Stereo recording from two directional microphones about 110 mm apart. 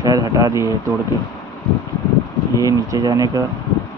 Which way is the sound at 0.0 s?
35° right (ahead or behind).